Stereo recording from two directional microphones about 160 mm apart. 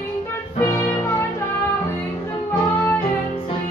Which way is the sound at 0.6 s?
20° left (ahead or behind).